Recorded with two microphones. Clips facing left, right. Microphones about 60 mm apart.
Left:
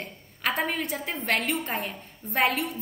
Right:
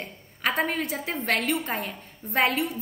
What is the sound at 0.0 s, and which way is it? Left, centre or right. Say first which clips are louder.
A woman's voice: right 2 dB; centre.